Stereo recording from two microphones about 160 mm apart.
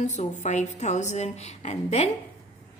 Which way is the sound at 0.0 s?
50° left (ahead or behind).